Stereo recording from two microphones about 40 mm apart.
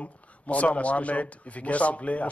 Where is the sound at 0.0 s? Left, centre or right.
Left.